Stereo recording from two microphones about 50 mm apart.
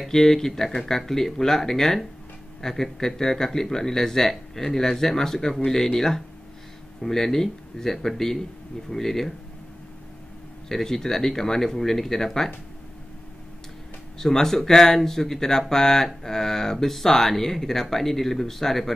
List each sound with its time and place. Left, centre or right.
0.0 s speech: centre
10.7 s speech: centre
14.1 s speech: centre